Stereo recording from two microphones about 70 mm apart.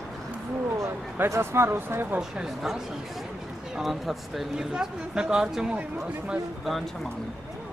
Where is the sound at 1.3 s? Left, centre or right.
Right.